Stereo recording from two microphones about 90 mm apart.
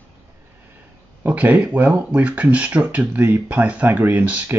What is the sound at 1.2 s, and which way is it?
Speech, 15° right (ahead or behind).